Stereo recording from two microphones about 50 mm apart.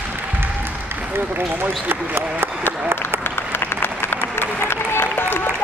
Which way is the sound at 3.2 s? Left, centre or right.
Left.